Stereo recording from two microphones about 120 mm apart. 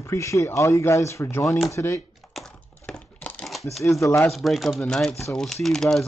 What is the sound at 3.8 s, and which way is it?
Speech, 25° left (ahead or behind).